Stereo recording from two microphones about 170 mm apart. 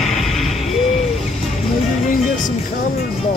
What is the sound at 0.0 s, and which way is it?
Music, centre (ahead or behind).